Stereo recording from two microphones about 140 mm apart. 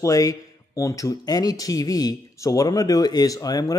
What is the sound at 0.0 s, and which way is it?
Speech, 25° left (ahead or behind).